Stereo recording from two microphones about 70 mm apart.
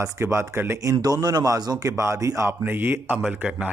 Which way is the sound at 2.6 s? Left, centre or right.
Right.